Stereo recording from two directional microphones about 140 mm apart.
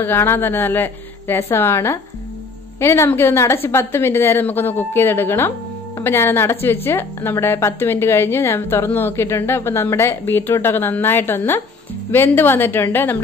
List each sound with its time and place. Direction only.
0.0 s a woman's voice: 15° left (ahead or behind)